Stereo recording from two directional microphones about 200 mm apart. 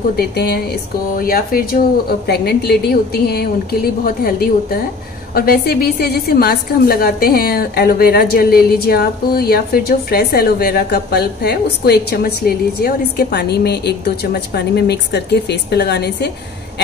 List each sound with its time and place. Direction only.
0.2 s a woman's voice: 50° left (ahead or behind)